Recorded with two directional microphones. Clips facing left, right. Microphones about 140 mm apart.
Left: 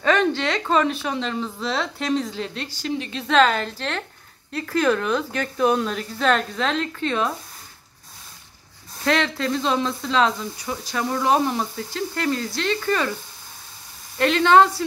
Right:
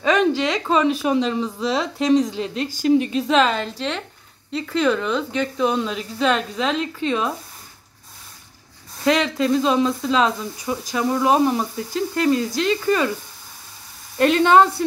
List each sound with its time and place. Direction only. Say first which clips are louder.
0.0 s a woman's voice: right 2 dB; 10° right (ahead or behind)
9.0 s speech: right 3 dB; 15° right (ahead or behind)
14.1 s speech: right 2 dB; 20° right (ahead or behind)